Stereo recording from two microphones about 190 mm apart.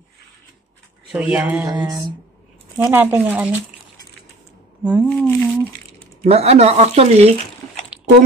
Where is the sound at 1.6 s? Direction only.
20° right (ahead or behind).